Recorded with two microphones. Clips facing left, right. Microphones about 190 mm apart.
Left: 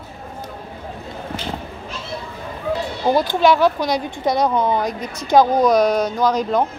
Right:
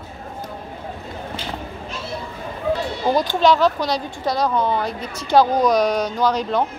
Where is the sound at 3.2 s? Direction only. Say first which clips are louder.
Even; 10° left (ahead or behind).